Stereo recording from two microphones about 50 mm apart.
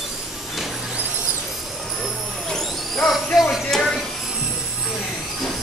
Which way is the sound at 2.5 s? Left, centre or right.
Centre.